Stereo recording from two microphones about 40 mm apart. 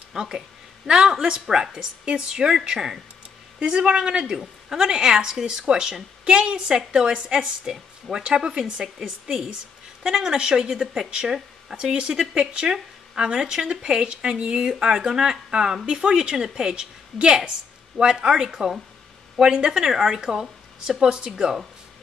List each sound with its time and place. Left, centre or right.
0.1 s a woman's voice: centre